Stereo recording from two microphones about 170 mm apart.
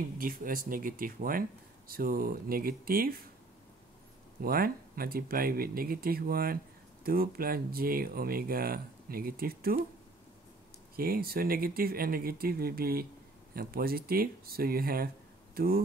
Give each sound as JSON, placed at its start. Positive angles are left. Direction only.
{"t": 0.2, "sound": "speech", "side_deg": -55}
{"t": 4.4, "sound": "speech", "side_deg": -60}
{"t": 11.0, "sound": "speech", "side_deg": -60}